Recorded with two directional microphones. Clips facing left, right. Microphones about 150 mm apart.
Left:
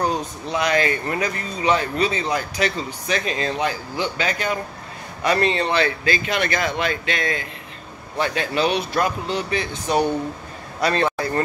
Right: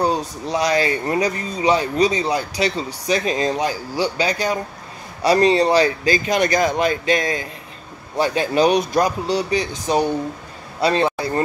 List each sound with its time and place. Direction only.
0.0 s speech: 35° right (ahead or behind)
10.8 s speech: 25° right (ahead or behind)